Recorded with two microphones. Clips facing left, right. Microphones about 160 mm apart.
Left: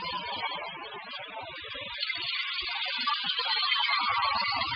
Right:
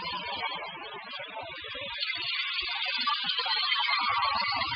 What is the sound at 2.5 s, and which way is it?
Music, 90° right.